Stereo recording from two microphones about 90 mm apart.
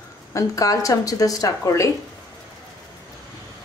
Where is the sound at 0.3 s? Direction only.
40° left (ahead or behind).